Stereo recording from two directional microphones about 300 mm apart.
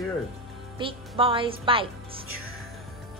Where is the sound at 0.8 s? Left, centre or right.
Centre.